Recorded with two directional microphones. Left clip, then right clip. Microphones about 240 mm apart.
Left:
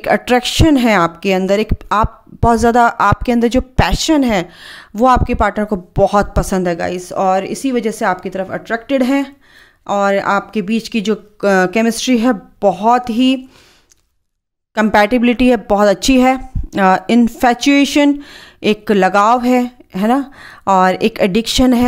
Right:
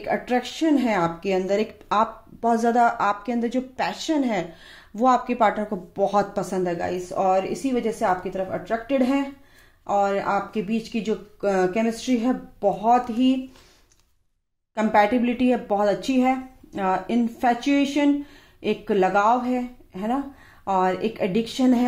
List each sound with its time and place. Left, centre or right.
0.0 s speech: left
14.7 s speech: left